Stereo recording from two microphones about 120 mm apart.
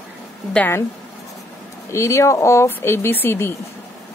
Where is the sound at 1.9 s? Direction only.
25° left (ahead or behind).